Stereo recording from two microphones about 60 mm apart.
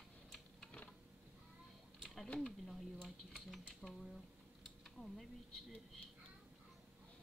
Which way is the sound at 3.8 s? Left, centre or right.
Centre.